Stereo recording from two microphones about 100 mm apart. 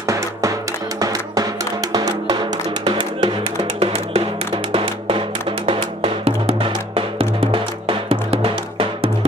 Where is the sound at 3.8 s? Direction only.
90° right.